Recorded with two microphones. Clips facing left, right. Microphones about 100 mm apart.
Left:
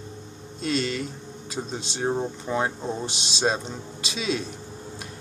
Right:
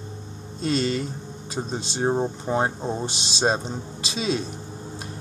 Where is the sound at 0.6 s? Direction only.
35° right (ahead or behind).